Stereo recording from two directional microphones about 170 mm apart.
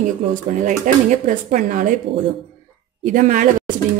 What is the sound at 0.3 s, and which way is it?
Speech, 50° right (ahead or behind).